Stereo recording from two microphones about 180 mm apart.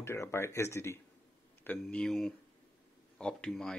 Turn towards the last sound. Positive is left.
turn(degrees=5)  # may be behind; listen again after turning